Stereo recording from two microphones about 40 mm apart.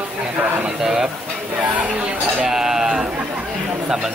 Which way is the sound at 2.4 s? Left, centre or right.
Centre.